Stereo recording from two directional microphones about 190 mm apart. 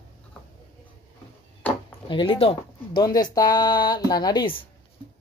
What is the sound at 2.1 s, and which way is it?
A woman's voice, 25° left (ahead or behind).